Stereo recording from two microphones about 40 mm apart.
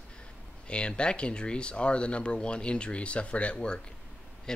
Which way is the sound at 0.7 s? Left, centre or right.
Left.